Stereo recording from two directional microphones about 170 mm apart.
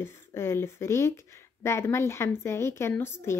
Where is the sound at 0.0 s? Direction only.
15° left (ahead or behind).